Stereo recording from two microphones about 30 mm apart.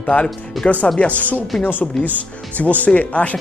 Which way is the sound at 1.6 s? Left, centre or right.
Left.